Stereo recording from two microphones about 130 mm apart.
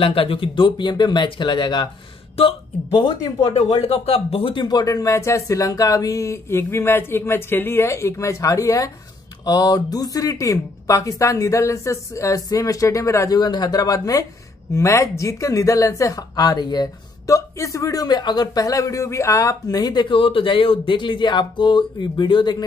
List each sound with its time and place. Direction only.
0.0 s speech: 45° left (ahead or behind)
2.4 s speech: 50° left (ahead or behind)
3.5 s speech: 55° left (ahead or behind); by 22.6 s 35° left (ahead or behind)